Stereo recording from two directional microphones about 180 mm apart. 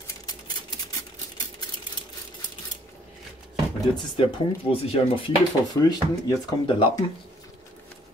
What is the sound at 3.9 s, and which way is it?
Speech, 25° left (ahead or behind).